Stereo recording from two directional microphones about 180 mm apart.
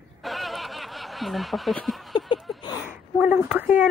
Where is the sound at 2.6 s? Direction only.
20° left (ahead or behind).